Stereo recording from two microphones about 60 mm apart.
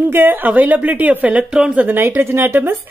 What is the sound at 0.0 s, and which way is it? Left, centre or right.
Speech, right.